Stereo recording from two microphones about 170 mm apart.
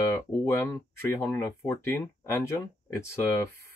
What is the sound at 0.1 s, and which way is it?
Speech, 20° left (ahead or behind).